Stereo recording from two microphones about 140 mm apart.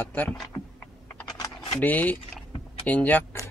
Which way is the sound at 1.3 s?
30° left (ahead or behind).